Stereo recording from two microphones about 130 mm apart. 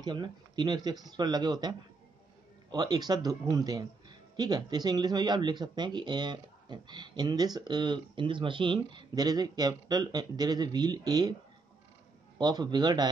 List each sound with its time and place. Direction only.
0.0 s a man's voice: 35° right (ahead or behind)
12.4 s a man's voice: 30° right (ahead or behind)